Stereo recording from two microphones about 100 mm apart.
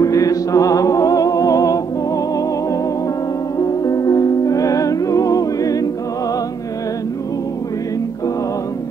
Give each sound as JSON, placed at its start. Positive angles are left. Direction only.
{"t": 0.0, "sound": "music", "side_deg": 35}
{"t": 3.5, "sound": "music", "side_deg": 35}